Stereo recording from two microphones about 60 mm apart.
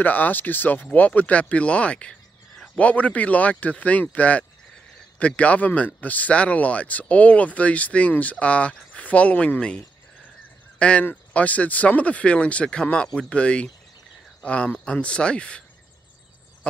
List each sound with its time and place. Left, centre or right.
0.0 s speech: left
10.8 s speech: centre